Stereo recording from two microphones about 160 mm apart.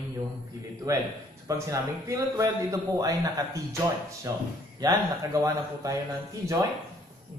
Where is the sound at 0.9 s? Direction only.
20° right (ahead or behind).